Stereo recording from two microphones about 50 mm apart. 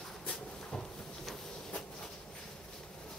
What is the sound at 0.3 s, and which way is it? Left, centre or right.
Dog, left.